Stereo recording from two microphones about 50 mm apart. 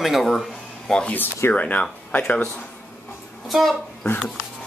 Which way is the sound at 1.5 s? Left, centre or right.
Left.